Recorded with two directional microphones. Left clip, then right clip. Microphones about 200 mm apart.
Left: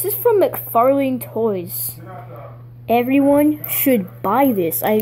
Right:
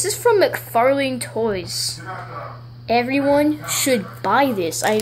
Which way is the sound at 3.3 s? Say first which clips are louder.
Left 2 dB; 35° left (ahead or behind).